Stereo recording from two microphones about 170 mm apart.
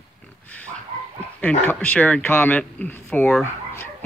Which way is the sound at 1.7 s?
10° left (ahead or behind).